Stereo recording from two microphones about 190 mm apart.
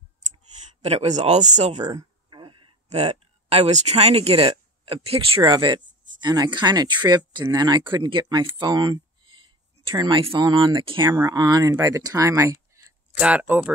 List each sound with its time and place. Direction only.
0.8 s speech: 30° right (ahead or behind)
1.9 s a sound: 25° right (ahead or behind)
4.0 s speech: 30° right (ahead or behind); by 13.7 s 10° right (ahead or behind)